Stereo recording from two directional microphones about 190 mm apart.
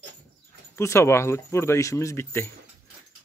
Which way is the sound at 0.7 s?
15° left (ahead or behind).